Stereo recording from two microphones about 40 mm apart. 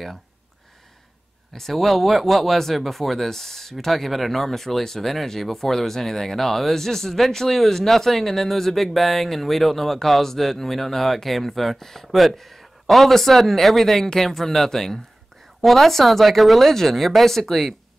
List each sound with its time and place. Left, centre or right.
1.5 s speech: centre